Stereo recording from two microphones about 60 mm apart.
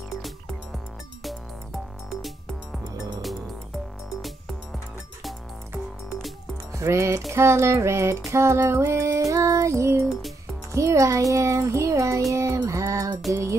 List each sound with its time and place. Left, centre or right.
2.0 s music: centre
6.7 s speech: right
7.3 s music: right
9.3 s music: right
10.7 s a child's voice: right
12.6 s music: right
13.3 s a child's voice: right